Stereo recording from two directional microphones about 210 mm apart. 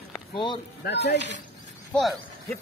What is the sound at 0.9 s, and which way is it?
Speech, 55° left (ahead or behind).